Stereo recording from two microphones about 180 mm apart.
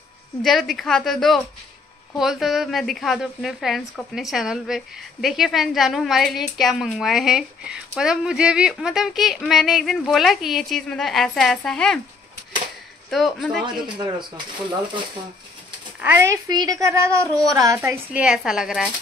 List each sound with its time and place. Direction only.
0.4 s a woman's voice: centre (ahead or behind)
13.1 s a woman's voice: centre (ahead or behind)
16.0 s a child's voice: 15° right (ahead or behind)